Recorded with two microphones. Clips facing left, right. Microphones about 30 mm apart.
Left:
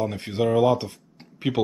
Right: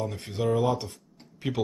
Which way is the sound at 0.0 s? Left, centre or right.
Left.